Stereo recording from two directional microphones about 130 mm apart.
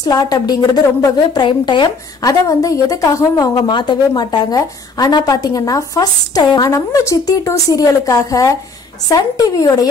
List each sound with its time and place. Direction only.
0.0 s a woman's voice: 30° left (ahead or behind)
2.4 s a woman's voice: 25° left (ahead or behind)